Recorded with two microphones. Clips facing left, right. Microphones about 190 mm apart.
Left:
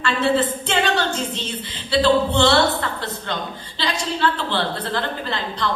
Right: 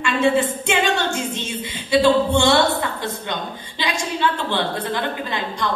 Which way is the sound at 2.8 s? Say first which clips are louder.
Right 2 dB; 15° right (ahead or behind).